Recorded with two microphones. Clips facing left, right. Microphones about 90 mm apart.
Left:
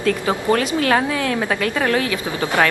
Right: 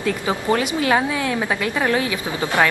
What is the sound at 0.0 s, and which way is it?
A woman's voice, 20° right (ahead or behind).